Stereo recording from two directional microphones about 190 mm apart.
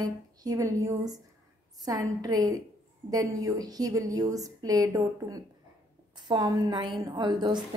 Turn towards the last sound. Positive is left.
turn(degrees=-25)  # may be behind; listen again after turning